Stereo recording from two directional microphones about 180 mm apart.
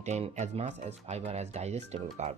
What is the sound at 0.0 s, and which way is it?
Speech, 40° right (ahead or behind).